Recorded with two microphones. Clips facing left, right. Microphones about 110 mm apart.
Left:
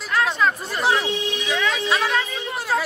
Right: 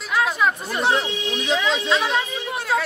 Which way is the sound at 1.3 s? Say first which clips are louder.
Right 2 dB; 25° right (ahead or behind).